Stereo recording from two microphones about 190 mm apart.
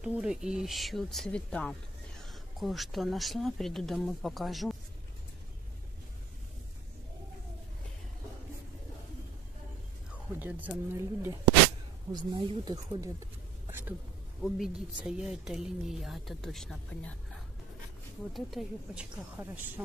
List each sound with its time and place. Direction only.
0.0 s speech: 5° right (ahead or behind)
10.1 s speech: 10° right (ahead or behind)
12.1 s speech: 25° right (ahead or behind)
13.7 s a sound: 10° right (ahead or behind)
14.4 s speech: 5° right (ahead or behind)
18.3 s speech: centre (ahead or behind)